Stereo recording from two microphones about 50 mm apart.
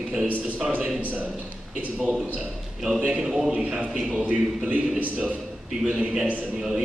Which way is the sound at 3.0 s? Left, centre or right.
Centre.